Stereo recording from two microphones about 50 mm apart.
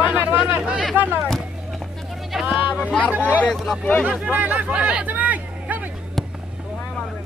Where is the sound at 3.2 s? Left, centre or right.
Left.